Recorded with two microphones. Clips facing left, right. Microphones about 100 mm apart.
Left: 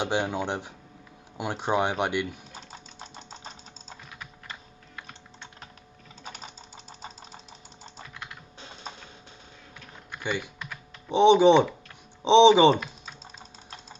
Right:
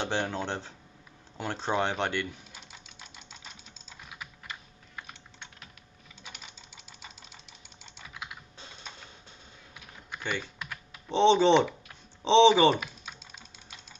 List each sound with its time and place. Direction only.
0.0 s speech: 15° left (ahead or behind)
2.5 s engine: 40° left (ahead or behind)
6.2 s engine knocking: 40° left (ahead or behind)
8.1 s typing: 5° right (ahead or behind)
10.2 s speech: 15° left (ahead or behind)
10.7 s computer keyboard: 15° left (ahead or behind)
12.2 s speech: 15° left (ahead or behind)
12.7 s typing: 5° right (ahead or behind)